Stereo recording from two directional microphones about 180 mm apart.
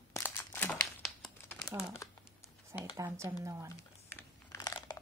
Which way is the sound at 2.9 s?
15° right (ahead or behind).